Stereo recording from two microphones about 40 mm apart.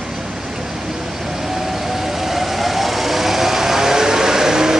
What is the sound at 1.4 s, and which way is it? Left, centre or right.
Vehicle, centre.